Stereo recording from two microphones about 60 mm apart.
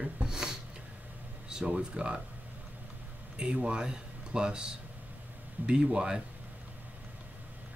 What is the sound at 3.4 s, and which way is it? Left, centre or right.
Speech, centre.